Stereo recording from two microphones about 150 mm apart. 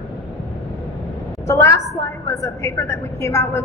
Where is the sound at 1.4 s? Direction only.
15° left (ahead or behind).